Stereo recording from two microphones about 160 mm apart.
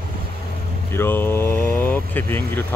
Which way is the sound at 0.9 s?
15° left (ahead or behind).